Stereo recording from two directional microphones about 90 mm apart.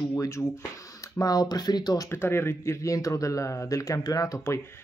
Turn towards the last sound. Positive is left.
turn(degrees=45)  # may be behind; listen again after turning